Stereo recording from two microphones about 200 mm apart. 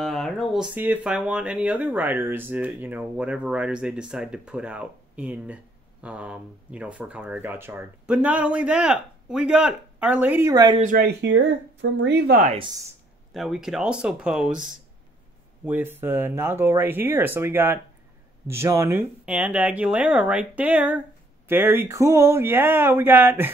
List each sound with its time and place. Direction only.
0.0 s speech: centre (ahead or behind)
10.5 s speech: 20° right (ahead or behind)
10.8 s speech: 40° right (ahead or behind)
11.1 s speech: 65° right (ahead or behind)
12.4 s speech: 25° right (ahead or behind)
13.3 s speech: centre (ahead or behind)